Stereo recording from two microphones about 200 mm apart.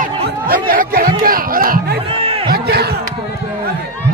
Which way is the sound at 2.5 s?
50° right (ahead or behind).